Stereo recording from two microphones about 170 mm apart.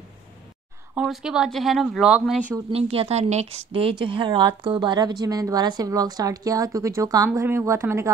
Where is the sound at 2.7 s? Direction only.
35° right (ahead or behind); by 8.1 s 15° right (ahead or behind).